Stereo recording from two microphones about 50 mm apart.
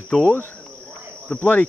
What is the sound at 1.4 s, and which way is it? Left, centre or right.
Speech, left.